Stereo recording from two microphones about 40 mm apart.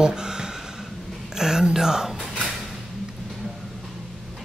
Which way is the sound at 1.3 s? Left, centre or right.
Centre.